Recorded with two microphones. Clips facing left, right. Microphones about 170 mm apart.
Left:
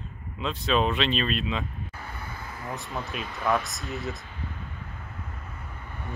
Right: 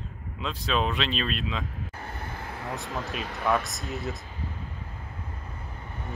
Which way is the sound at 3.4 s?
Centre (ahead or behind).